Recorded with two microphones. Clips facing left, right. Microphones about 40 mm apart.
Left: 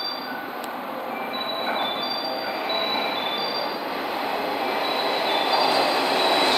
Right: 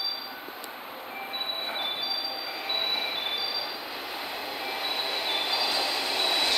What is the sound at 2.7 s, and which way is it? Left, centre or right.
Train, centre.